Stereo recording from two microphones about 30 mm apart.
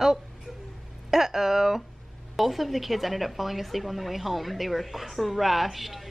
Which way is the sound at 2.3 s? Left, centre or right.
Centre.